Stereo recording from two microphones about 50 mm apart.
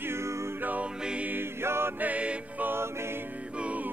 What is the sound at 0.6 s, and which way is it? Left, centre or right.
Music, right.